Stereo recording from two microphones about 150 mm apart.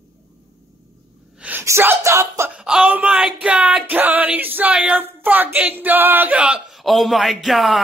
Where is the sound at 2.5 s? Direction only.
5° right (ahead or behind).